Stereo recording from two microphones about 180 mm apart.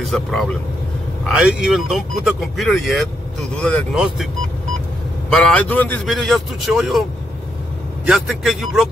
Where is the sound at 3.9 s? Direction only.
5° right (ahead or behind).